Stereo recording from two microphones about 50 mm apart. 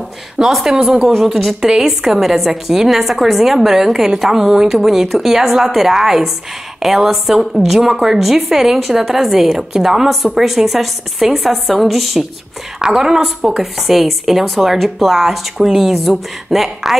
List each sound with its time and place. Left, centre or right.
0.5 s a woman's voice: centre